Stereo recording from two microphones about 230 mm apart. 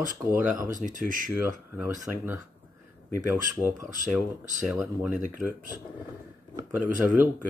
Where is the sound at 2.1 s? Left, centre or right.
Centre.